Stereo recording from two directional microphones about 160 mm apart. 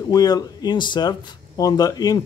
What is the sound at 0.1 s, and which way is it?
Speech, 25° left (ahead or behind).